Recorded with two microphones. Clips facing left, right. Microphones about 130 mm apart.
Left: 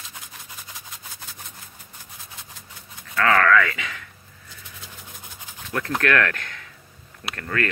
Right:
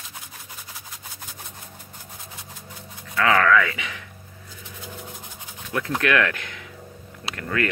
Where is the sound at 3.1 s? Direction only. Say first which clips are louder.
Even; 15° right (ahead or behind).